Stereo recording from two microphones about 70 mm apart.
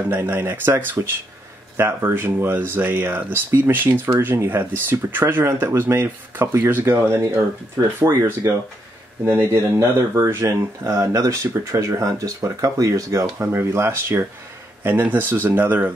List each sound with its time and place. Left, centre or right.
0.1 s speech: right
8.0 s speech: right
9.2 s speech: right
9.5 s speech: right
13.4 s speech: right